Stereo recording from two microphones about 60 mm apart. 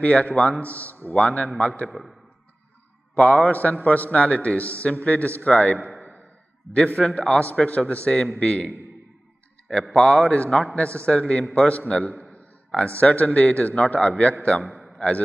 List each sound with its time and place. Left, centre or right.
0.0 s a man's voice: left
1.9 s a man's voice: centre
3.2 s a man's voice: left
9.7 s speech: centre
10.0 s a man's voice: centre
14.6 s a man's voice: centre
14.9 s a sound: centre